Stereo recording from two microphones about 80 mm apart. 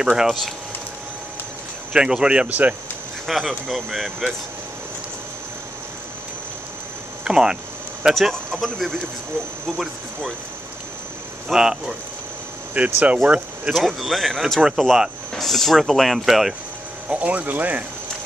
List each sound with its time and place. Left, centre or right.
0.0 s speech: centre
2.0 s speech: centre
3.3 s speech: centre
7.2 s speech: centre
8.1 s speech: centre
11.4 s speech: centre
12.7 s speech: centre
13.7 s speech: centre
17.1 s speech: centre